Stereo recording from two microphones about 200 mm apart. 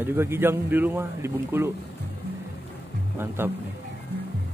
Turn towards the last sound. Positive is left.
turn(degrees=-10)  # may be behind; listen again after turning